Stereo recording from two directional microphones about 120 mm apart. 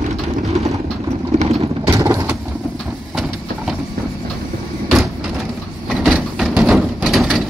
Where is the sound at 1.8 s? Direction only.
30° right (ahead or behind).